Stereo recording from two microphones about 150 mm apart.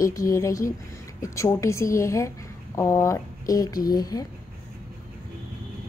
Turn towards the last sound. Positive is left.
turn(degrees=25)  # may be behind; listen again after turning